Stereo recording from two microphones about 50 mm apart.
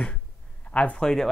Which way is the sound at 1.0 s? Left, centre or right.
Centre.